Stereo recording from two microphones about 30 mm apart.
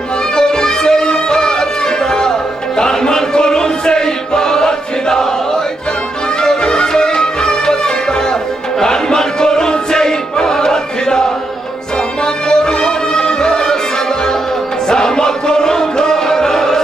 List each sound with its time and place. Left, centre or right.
0.4 s music: left
12.4 s music: left
14.9 s music: left